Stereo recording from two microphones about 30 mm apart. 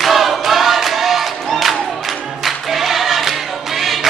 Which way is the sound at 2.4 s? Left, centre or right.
Centre.